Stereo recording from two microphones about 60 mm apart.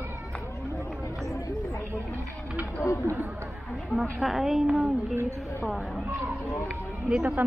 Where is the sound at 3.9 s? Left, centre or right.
Centre.